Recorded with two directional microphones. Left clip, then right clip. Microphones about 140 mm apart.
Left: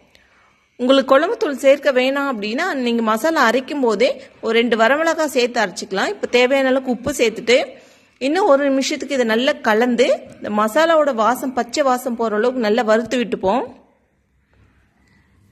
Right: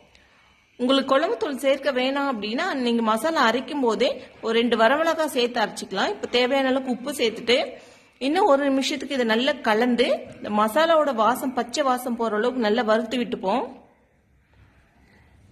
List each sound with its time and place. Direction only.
0.8 s a woman's voice: 25° left (ahead or behind)